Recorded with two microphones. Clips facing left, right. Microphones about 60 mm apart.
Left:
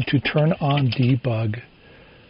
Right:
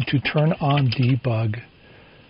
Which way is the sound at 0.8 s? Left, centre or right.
Right.